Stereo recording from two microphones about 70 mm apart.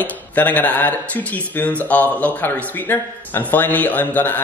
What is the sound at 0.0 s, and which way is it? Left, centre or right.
Speech, left.